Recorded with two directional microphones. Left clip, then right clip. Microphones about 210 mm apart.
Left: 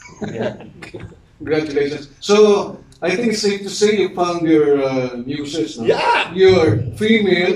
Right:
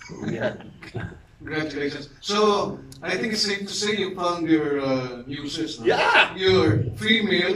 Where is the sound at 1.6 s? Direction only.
10° left (ahead or behind).